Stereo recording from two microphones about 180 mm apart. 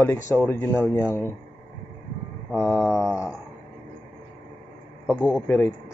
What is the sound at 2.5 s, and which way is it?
Mantra, 5° right (ahead or behind).